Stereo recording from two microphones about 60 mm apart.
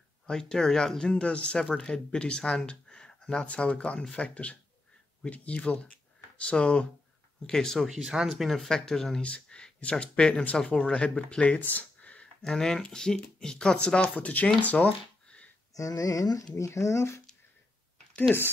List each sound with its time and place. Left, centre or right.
0.3 s speech: centre
8.0 s speech: centre
9.2 s speech: centre
12.4 s speech: centre; by 15.4 s left
15.7 s speech: left
16.5 s speech: left